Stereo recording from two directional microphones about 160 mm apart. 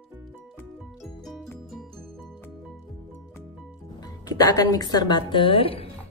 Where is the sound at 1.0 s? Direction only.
Centre (ahead or behind).